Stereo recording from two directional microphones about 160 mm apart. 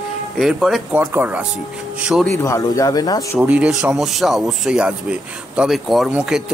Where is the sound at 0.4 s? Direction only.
Centre (ahead or behind).